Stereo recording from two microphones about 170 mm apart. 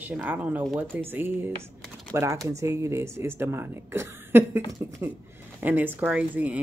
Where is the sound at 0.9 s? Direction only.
10° right (ahead or behind).